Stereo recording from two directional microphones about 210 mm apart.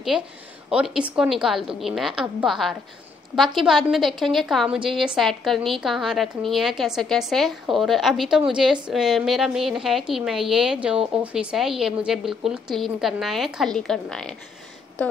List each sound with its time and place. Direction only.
0.1 s a woman's voice: 5° right (ahead or behind)